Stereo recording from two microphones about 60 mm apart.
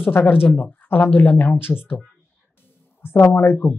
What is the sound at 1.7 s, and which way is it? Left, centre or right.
Speech, centre.